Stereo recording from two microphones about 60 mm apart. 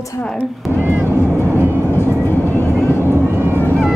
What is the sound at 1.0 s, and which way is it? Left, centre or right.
Vehicle, left.